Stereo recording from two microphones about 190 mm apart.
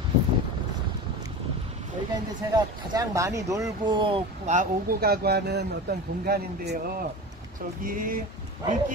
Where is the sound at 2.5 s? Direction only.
20° right (ahead or behind).